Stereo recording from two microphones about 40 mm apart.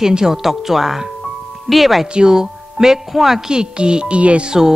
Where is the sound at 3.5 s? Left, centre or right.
Right.